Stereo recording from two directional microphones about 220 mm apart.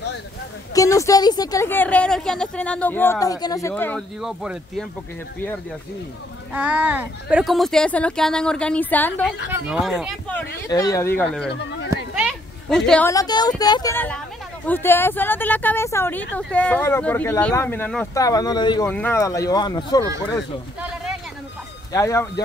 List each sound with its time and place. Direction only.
0.7 s a woman's voice: 15° left (ahead or behind); by 4.8 s centre (ahead or behind)
6.5 s speech: 5° right (ahead or behind)
9.5 s speech: 5° right (ahead or behind)
10.7 s a woman's voice: 15° left (ahead or behind)
11.4 s speech: 55° left (ahead or behind)
12.2 s a sound: centre (ahead or behind)
13.1 s a woman's voice: 15° left (ahead or behind)
18.9 s a woman's voice: 10° left (ahead or behind)
21.9 s a woman's voice: 15° left (ahead or behind)